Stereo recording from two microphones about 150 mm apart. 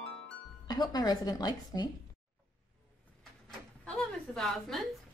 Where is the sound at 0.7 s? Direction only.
25° left (ahead or behind).